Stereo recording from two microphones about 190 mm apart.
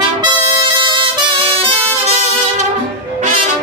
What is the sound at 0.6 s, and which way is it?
Music, 25° right (ahead or behind).